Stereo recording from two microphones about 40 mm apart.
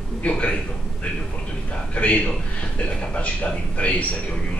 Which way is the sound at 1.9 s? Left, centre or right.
Left.